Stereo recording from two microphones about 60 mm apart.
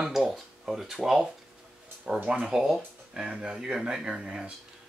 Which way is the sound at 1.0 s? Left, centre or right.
Centre.